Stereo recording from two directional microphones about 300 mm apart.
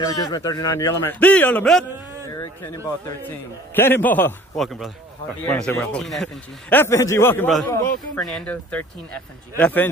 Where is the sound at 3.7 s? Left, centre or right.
Centre.